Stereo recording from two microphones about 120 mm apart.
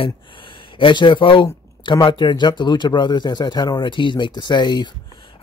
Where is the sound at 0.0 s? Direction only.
45° left (ahead or behind).